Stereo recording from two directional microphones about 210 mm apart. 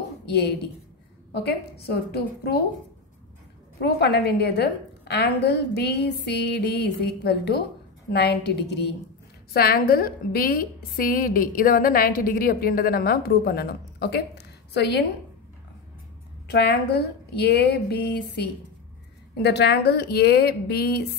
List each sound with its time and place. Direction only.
0.2 s a woman's voice: 50° left (ahead or behind)
3.8 s a woman's voice: 50° left (ahead or behind)
16.4 s a woman's voice: 50° left (ahead or behind)